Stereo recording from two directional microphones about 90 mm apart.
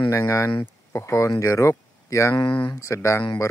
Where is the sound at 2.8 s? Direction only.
35° left (ahead or behind).